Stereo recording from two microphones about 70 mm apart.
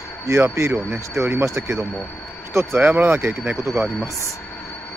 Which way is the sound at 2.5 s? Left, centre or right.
Right.